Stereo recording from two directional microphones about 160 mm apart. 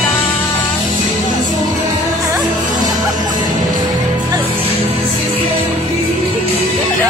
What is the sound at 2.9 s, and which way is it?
Music, 25° right (ahead or behind).